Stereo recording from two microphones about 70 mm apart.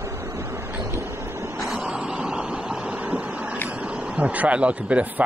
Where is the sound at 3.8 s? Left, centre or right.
Centre.